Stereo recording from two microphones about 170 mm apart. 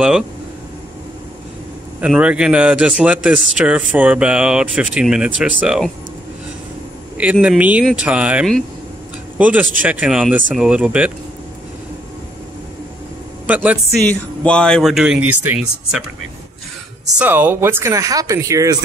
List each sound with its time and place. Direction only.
2.0 s speech: 5° right (ahead or behind)
7.3 s speech: 5° right (ahead or behind)
13.5 s speech: 10° right (ahead or behind)
14.0 s speech: 5° left (ahead or behind)
17.0 s speech: 10° right (ahead or behind)